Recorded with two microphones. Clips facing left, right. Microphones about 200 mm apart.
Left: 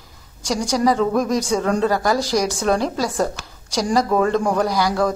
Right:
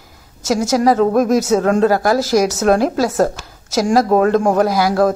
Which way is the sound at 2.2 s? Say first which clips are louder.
Right 5 dB; 5° right (ahead or behind).